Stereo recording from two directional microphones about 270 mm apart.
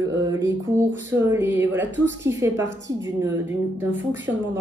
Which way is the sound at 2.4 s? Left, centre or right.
Centre.